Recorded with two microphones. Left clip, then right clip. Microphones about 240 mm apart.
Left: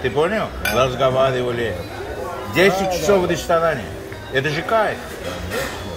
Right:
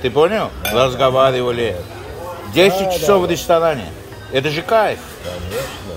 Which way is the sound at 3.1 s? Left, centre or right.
Right.